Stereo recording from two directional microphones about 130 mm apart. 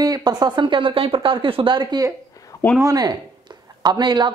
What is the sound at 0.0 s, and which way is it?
Speech, 30° right (ahead or behind).